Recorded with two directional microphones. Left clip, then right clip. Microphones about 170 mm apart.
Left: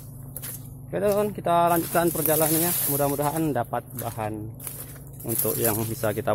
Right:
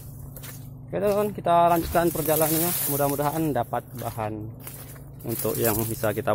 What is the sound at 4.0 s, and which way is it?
Speech, centre (ahead or behind).